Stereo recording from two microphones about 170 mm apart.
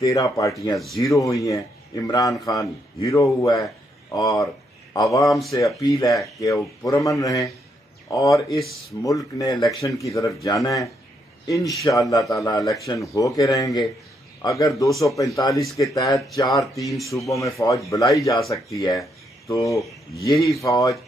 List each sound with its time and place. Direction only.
0.0 s a man's voice: 20° left (ahead or behind)